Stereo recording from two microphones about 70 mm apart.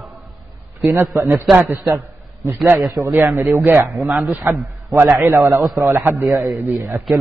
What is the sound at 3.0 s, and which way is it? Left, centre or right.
Speech, right.